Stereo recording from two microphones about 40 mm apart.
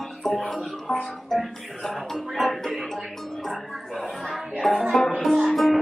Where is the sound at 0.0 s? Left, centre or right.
Centre.